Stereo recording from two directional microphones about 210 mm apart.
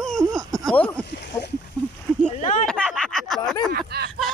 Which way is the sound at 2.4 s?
35° left (ahead or behind).